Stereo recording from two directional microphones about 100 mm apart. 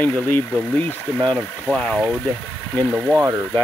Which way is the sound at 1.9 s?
Centre (ahead or behind).